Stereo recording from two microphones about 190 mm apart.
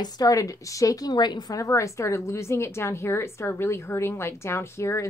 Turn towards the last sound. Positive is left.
turn(degrees=15)  # may be behind; listen again after turning